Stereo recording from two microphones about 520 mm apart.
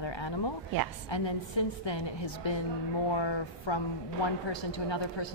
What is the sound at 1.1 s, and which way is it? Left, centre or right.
A woman's voice, left.